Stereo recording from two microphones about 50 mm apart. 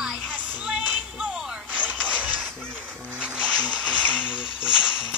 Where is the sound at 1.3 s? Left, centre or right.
Right.